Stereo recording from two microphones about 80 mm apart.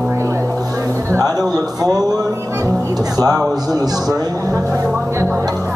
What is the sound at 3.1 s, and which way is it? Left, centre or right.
A man's voice, right.